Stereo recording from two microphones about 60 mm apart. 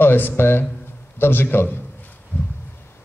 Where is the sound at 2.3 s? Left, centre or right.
Left.